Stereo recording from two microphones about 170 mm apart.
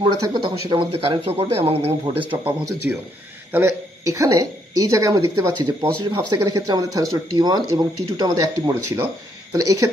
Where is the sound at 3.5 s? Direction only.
15° right (ahead or behind).